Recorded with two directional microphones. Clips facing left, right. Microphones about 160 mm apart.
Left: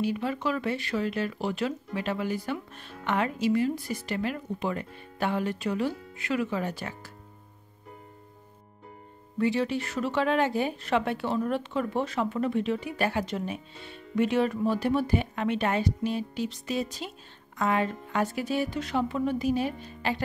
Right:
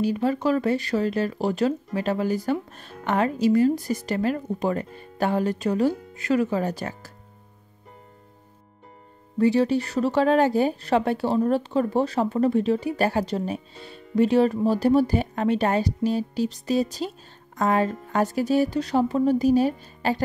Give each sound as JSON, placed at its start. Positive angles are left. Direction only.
{"t": 0.0, "sound": "speech", "side_deg": -40}
{"t": 9.4, "sound": "speech", "side_deg": -35}